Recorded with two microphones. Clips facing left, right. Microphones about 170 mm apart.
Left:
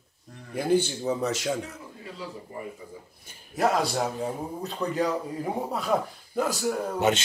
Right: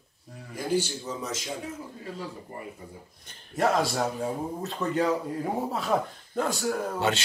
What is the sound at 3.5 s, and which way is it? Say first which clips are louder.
A man's voice: even; centre (ahead or behind).